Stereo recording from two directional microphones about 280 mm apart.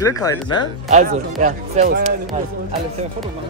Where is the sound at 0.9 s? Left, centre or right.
Right.